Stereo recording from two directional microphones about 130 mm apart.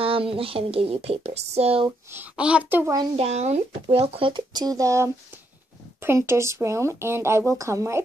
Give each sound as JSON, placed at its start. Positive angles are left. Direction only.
{"t": 0.0, "sound": "speech", "side_deg": -45}
{"t": 2.1, "sound": "a woman's voice", "side_deg": -10}
{"t": 3.2, "sound": "speech", "side_deg": -55}